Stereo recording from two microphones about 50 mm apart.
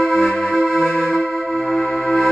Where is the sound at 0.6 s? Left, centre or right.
Centre.